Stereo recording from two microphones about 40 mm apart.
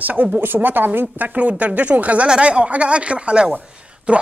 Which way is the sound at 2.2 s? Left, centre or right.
Right.